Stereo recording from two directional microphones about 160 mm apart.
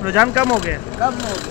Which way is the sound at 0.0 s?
10° right (ahead or behind).